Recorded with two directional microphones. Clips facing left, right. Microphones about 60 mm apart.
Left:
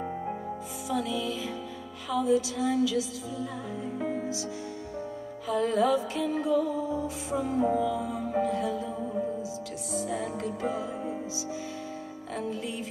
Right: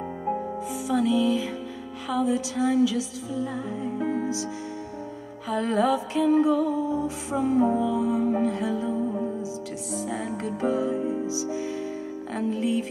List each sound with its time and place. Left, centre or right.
0.8 s music: right
5.5 s music: right